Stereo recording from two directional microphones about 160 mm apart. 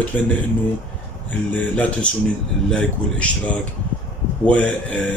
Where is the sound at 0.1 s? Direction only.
10° left (ahead or behind).